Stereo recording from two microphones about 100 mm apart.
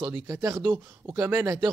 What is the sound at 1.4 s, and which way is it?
Speech, 35° right (ahead or behind).